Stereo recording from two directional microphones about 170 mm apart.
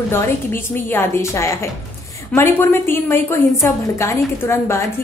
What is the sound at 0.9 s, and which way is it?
A woman's voice, 15° left (ahead or behind).